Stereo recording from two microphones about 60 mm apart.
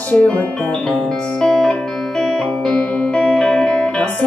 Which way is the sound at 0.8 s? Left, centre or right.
Centre.